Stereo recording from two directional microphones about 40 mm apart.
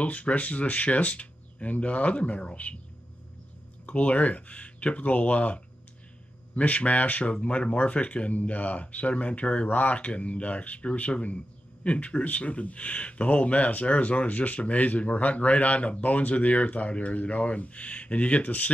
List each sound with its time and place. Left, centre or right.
0.0 s speech: left
3.8 s speech: left
7.3 s speech: left